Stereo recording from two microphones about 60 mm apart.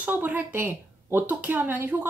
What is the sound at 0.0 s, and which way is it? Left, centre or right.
Speech, right.